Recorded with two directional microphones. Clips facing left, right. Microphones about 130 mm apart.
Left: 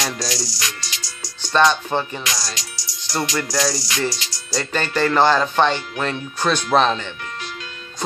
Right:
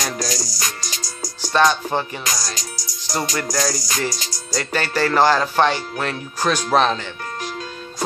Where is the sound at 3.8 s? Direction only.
45° right (ahead or behind).